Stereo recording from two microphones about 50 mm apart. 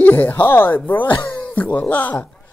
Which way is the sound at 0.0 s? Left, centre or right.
Left.